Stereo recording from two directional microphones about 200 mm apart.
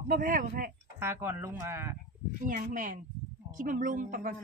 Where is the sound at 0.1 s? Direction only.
45° right (ahead or behind).